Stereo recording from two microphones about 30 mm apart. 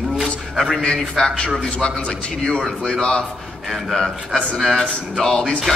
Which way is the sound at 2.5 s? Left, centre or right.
Centre.